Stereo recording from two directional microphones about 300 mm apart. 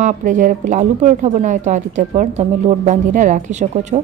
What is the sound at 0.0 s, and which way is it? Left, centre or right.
Speech, right.